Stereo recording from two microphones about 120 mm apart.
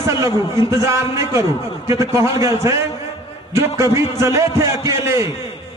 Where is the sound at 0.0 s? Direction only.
25° right (ahead or behind).